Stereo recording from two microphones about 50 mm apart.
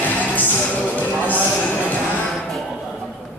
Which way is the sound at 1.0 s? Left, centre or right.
Left.